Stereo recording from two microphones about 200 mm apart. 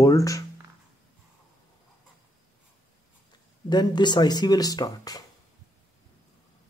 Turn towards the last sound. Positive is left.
turn(degrees=20)  # may be behind; listen again after turning